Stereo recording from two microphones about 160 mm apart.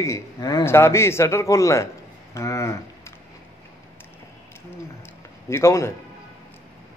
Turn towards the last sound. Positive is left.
turn(degrees=15)  # may be behind; listen again after turning